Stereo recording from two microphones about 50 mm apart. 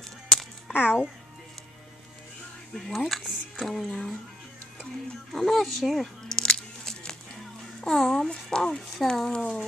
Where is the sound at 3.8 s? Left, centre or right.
Left.